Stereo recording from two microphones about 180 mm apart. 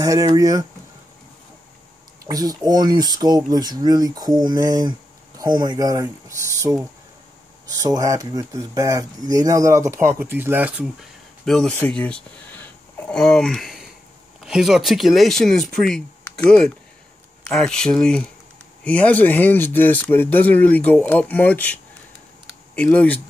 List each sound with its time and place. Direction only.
0.0 s speech: 20° right (ahead or behind)
2.2 s speech: 20° right (ahead or behind)
11.4 s speech: 5° left (ahead or behind)
22.8 s speech: 10° left (ahead or behind)